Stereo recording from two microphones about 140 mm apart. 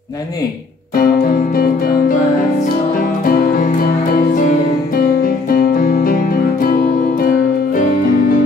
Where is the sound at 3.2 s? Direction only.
90° left.